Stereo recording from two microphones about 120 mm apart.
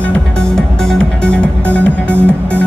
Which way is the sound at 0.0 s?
5° left (ahead or behind).